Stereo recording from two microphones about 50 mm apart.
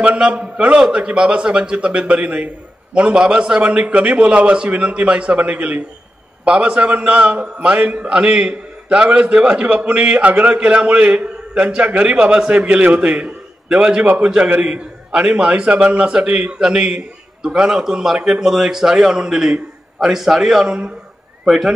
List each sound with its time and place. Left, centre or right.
0.2 s a man's voice: right